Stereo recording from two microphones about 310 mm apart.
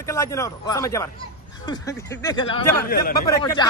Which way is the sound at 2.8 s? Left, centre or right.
Left.